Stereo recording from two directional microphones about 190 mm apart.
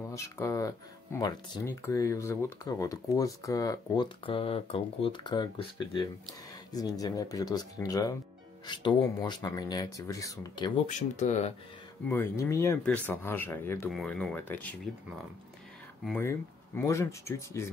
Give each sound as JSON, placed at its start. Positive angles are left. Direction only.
{"t": 0.1, "sound": "speech", "side_deg": 15}
{"t": 10.9, "sound": "speech", "side_deg": 40}
{"t": 12.1, "sound": "speech", "side_deg": 15}
{"t": 16.1, "sound": "speech", "side_deg": 10}